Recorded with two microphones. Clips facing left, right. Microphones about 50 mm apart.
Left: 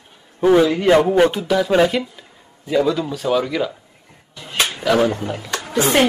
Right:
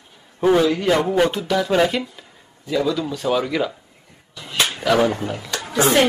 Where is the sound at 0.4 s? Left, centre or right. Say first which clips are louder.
Left 2 dB; centre.